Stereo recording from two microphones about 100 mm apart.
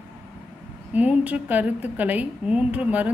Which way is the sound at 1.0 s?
15° right (ahead or behind).